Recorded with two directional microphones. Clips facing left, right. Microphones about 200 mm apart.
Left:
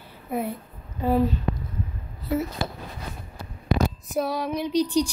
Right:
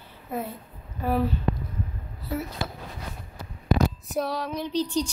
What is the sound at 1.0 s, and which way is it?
Speech, 20° left (ahead or behind).